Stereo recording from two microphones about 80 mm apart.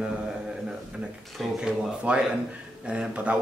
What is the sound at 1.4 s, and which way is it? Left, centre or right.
Speech, centre.